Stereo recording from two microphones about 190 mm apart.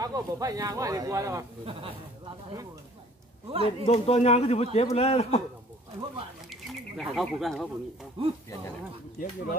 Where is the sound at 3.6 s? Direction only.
30° left (ahead or behind).